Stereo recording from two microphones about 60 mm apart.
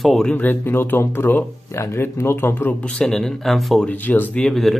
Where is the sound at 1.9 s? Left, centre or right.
Left.